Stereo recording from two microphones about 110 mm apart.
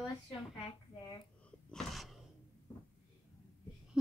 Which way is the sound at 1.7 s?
Centre (ahead or behind).